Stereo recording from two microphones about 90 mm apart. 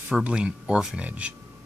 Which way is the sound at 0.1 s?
10° right (ahead or behind).